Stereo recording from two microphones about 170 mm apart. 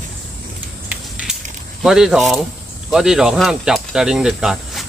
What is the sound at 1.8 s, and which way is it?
Speech, 5° right (ahead or behind).